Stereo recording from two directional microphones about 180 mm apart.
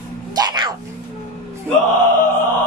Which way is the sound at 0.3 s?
25° right (ahead or behind).